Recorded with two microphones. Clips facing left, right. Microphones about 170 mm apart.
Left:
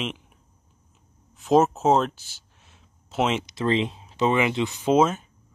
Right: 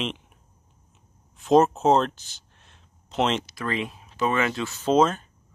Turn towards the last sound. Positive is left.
turn(degrees=10)  # may be behind; listen again after turning